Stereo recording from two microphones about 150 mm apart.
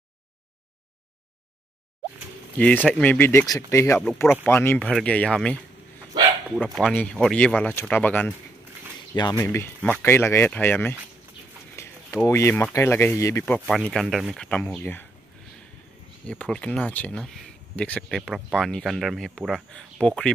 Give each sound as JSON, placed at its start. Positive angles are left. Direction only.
{"t": 2.6, "sound": "speech", "side_deg": 10}
{"t": 11.7, "sound": "a sound", "side_deg": 15}
{"t": 12.3, "sound": "speech", "side_deg": 15}
{"t": 13.7, "sound": "speech", "side_deg": 0}
{"t": 16.3, "sound": "speech", "side_deg": 5}